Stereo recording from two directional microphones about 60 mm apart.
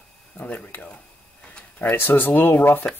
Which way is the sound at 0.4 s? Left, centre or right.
Left.